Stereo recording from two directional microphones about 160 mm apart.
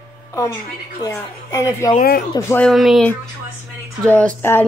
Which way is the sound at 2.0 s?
65° left (ahead or behind).